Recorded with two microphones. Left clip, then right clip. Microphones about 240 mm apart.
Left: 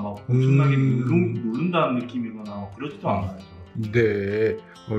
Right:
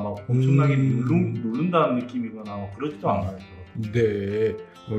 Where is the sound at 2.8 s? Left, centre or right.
Right.